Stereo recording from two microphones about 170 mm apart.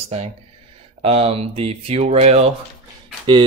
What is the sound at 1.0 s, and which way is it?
Speech, 35° right (ahead or behind).